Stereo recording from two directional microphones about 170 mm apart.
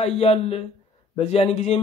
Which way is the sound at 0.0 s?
35° left (ahead or behind).